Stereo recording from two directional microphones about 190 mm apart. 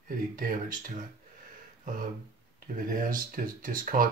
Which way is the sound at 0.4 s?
45° right (ahead or behind).